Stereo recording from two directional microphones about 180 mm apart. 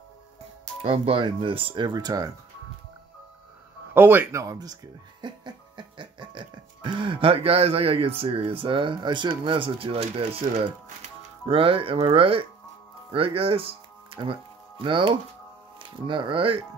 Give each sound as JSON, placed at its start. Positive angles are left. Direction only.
{"t": 0.8, "sound": "speech", "side_deg": -30}
{"t": 3.9, "sound": "speech", "side_deg": -10}
{"t": 5.2, "sound": "music", "side_deg": -25}
{"t": 9.4, "sound": "speech", "side_deg": -30}